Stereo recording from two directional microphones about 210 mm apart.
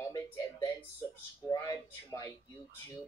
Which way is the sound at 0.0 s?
15° left (ahead or behind).